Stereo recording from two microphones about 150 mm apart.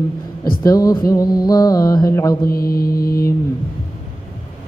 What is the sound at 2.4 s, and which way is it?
Mantra, 80° left.